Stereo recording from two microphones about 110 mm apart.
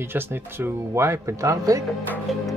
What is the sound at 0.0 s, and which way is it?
Speech, 20° right (ahead or behind).